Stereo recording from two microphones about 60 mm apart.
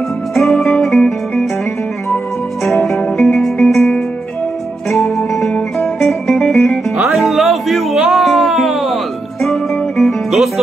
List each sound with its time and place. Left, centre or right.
0.3 s music: centre
2.6 s music: centre
4.9 s music: centre